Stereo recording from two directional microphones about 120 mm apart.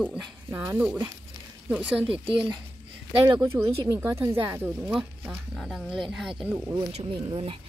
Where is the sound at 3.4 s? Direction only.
20° right (ahead or behind).